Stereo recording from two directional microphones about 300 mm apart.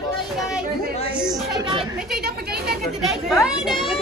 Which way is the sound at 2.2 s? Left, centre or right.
Right.